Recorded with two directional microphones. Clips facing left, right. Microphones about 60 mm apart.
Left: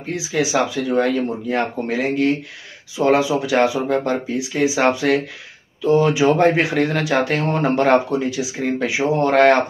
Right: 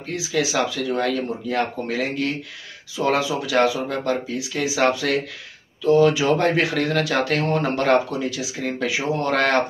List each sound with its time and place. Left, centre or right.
0.1 s speech: left